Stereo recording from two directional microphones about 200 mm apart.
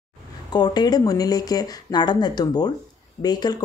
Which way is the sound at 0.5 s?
20° left (ahead or behind).